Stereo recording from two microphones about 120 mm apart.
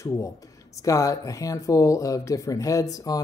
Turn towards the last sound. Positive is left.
turn(degrees=30)  # may be behind; listen again after turning